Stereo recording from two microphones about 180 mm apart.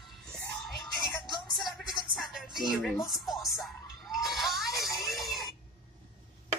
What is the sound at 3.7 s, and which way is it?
Music, centre (ahead or behind).